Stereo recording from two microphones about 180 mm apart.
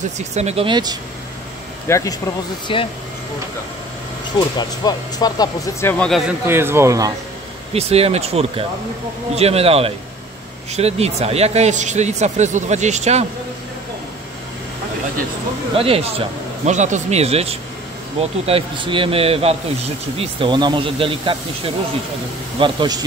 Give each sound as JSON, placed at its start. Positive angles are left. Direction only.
{"t": 0.2, "sound": "speech", "side_deg": -40}
{"t": 1.9, "sound": "speech", "side_deg": 15}
{"t": 2.7, "sound": "speech", "side_deg": 30}
{"t": 4.4, "sound": "speech", "side_deg": 25}
{"t": 6.4, "sound": "speech", "side_deg": -15}
{"t": 7.7, "sound": "speech", "side_deg": -35}
{"t": 15.7, "sound": "speech", "side_deg": -30}